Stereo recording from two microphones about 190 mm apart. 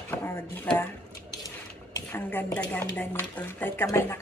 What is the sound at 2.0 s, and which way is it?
Speech, 10° left (ahead or behind).